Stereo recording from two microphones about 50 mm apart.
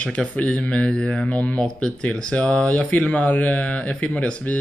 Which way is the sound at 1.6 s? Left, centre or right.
Centre.